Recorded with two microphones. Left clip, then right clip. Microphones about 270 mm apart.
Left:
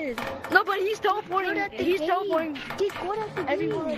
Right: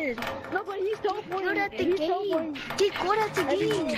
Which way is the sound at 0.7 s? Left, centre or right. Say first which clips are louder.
Left 3 dB; left.